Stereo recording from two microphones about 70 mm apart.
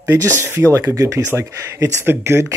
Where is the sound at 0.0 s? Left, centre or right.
Right.